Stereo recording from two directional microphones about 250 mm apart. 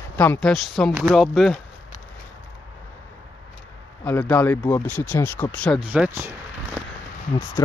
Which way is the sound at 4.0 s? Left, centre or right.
Centre.